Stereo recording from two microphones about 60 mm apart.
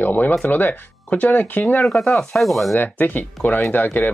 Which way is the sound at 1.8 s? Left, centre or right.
Centre.